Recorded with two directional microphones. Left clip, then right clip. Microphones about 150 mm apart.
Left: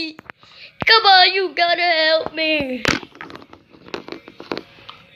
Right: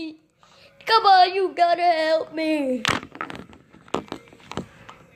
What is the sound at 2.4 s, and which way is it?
Speech, 20° right (ahead or behind).